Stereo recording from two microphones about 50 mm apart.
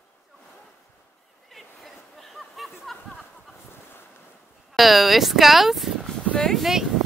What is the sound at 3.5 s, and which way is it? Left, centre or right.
Boat, left.